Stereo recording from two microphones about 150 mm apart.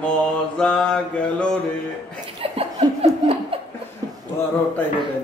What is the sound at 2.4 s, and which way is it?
Laughter, 40° right (ahead or behind).